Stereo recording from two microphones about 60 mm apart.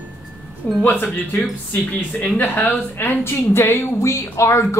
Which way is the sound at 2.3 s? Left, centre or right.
Left.